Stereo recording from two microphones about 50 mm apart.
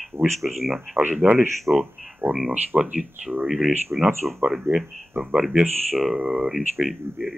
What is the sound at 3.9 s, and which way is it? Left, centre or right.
Speech, right.